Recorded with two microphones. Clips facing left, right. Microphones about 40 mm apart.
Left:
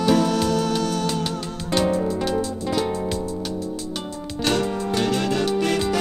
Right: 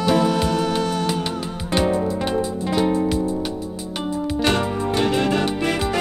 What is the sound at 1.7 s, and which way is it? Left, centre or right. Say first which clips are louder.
Music: right 1 dB; centre.